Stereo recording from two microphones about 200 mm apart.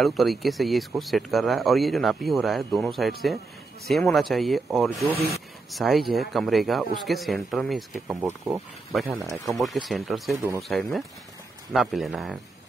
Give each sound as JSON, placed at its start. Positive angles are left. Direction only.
{"t": 0.0, "sound": "speech", "side_deg": 0}
{"t": 10.3, "sound": "speech", "side_deg": -15}
{"t": 10.7, "sound": "speech", "side_deg": 0}